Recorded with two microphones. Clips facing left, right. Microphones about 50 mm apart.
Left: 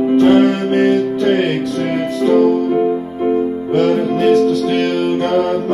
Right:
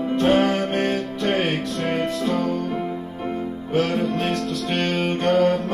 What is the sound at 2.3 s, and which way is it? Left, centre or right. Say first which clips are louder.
Music: left 11 dB; centre.